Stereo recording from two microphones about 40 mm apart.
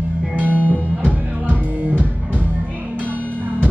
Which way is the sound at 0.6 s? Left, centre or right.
Right.